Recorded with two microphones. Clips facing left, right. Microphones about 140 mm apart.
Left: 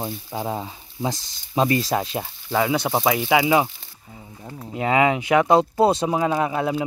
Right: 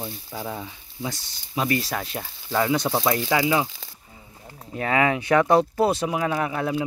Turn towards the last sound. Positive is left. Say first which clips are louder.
# left 3 dB
turn(degrees=20)  # may be behind; listen again after turning